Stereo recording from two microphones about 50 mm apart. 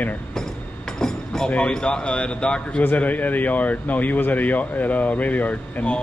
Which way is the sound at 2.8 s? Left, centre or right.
Left.